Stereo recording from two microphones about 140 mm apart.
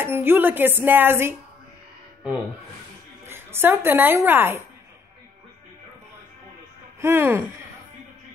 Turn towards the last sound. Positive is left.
turn(degrees=-20)  # may be behind; listen again after turning